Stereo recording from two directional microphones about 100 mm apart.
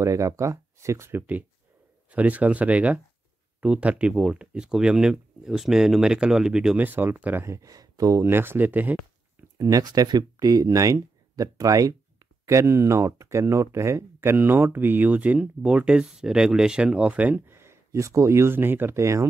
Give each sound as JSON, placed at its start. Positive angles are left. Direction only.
{"t": 0.0, "sound": "speech", "side_deg": -30}
{"t": 6.8, "sound": "speech", "side_deg": -20}
{"t": 7.4, "sound": "speech", "side_deg": -35}
{"t": 9.6, "sound": "speech", "side_deg": -35}